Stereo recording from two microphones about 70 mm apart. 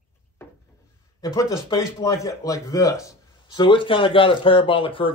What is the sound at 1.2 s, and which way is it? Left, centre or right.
Speech, left.